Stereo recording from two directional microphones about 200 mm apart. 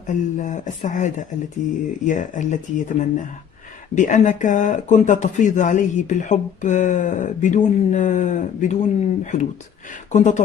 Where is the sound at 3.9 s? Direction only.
40° left (ahead or behind).